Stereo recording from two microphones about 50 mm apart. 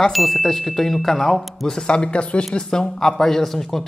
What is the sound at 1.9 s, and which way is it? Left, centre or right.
Speech, centre.